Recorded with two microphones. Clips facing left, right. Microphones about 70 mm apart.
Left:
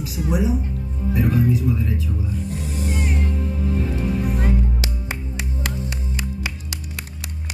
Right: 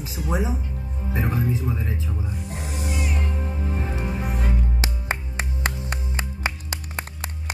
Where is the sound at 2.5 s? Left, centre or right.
Right.